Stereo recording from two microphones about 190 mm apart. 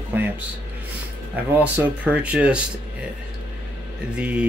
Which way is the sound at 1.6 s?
5° right (ahead or behind).